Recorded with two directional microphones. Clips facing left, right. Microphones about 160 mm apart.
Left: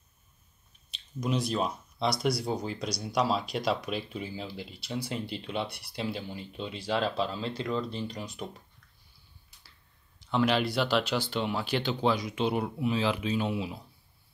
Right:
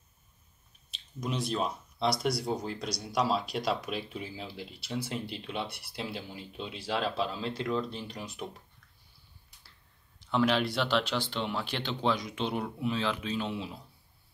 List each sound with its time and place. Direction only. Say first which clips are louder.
0.9 s speech: left 4 dB; centre (ahead or behind)
10.3 s speech: left 1 dB; centre (ahead or behind)